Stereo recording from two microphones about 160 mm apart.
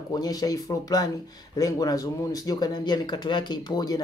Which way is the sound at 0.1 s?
25° left (ahead or behind).